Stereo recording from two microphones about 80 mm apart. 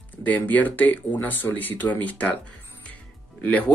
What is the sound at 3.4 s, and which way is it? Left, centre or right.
Speech, centre.